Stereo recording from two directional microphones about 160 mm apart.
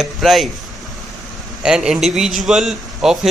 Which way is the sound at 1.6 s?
5° right (ahead or behind).